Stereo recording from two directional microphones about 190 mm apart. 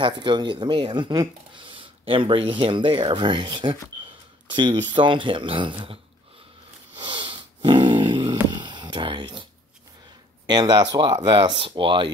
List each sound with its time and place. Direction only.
0.0 s speech: 25° right (ahead or behind)
4.9 s speech: 25° right (ahead or behind)
7.0 s dog: 25° right (ahead or behind)
10.4 s speech: 20° right (ahead or behind)